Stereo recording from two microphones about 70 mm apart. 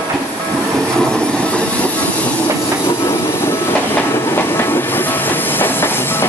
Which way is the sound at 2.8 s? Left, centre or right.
Left.